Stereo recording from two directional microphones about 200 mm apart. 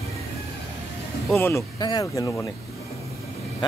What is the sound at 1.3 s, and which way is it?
Speech, 10° left (ahead or behind).